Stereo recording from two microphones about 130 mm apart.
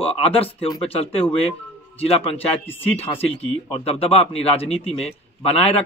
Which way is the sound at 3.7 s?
50° left (ahead or behind).